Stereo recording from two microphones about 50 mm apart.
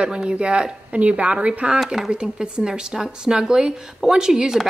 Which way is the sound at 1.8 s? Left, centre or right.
Centre.